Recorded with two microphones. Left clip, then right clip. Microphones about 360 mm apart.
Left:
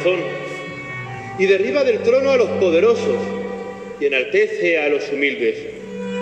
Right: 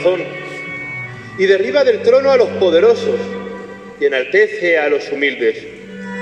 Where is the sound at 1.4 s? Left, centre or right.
Right.